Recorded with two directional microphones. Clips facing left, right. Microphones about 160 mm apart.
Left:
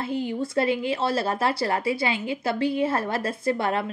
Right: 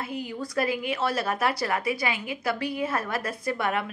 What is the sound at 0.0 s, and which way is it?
Speech, 25° left (ahead or behind).